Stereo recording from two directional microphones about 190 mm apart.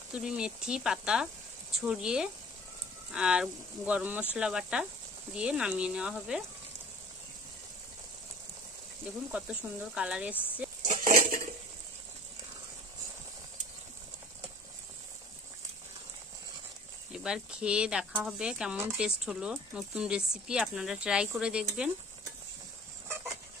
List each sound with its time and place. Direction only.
0.1 s speech: 5° right (ahead or behind)
9.3 s speech: 5° right (ahead or behind)
10.3 s speech: 10° left (ahead or behind)
10.9 s dishes: 45° right (ahead or behind)
17.1 s speech: 5° right (ahead or behind)